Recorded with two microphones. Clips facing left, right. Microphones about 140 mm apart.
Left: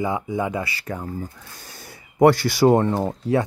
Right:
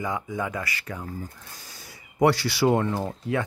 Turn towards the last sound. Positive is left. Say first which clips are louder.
# left 6 dB
turn(degrees=35)  # may be behind; listen again after turning